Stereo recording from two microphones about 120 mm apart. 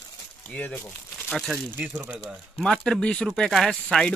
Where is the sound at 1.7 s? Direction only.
20° right (ahead or behind).